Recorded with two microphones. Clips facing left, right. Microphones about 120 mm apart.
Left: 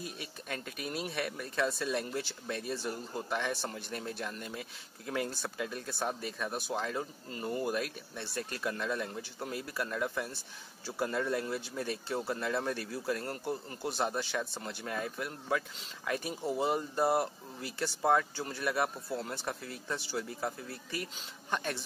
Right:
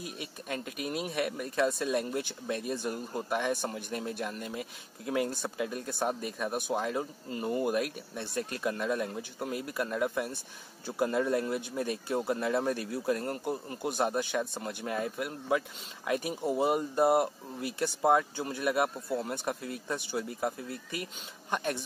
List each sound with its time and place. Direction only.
0.8 s speech: 5° right (ahead or behind)
1.1 s speech: 15° right (ahead or behind)